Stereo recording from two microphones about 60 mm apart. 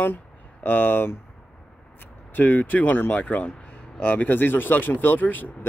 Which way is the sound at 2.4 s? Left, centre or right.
Left.